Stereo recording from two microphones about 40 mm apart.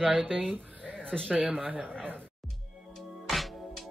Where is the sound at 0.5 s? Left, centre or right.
Right.